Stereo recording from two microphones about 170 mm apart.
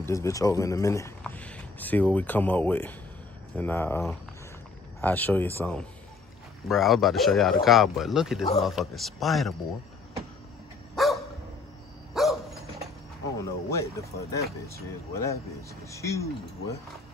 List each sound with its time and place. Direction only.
0.0 s speech: 20° left (ahead or behind)
1.2 s speech: 5° left (ahead or behind)
5.0 s speech: 10° left (ahead or behind)
6.7 s a man's voice: centre (ahead or behind)
11.0 s dog: centre (ahead or behind)
13.4 s speech: 15° left (ahead or behind)